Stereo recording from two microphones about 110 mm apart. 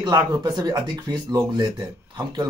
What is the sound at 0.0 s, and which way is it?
Speech, 40° right (ahead or behind).